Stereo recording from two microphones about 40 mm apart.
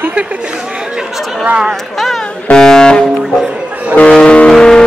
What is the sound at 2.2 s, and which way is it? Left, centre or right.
Music, centre.